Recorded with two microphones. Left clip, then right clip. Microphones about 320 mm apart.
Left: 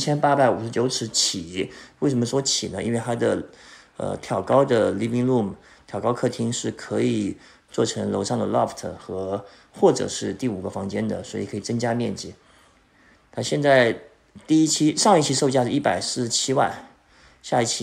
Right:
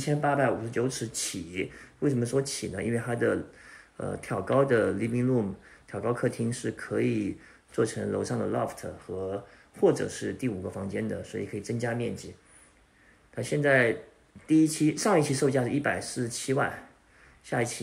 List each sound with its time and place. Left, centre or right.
0.2 s speech: centre
13.3 s speech: centre